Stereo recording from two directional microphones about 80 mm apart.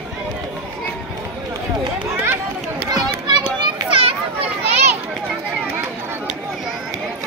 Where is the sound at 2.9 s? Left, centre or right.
Right.